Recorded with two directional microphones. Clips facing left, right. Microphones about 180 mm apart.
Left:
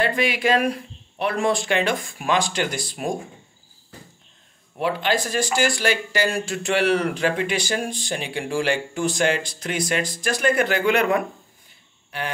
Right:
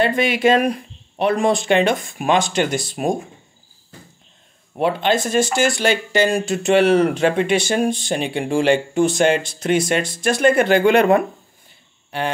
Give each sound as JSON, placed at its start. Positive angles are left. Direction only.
{"t": 0.0, "sound": "speech", "side_deg": -25}
{"t": 4.7, "sound": "speech", "side_deg": -25}